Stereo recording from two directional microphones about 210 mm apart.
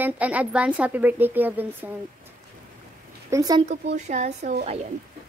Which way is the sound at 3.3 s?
15° right (ahead or behind).